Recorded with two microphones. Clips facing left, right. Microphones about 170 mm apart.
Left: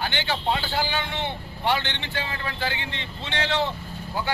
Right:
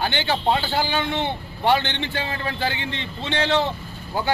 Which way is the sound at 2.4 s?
30° right (ahead or behind).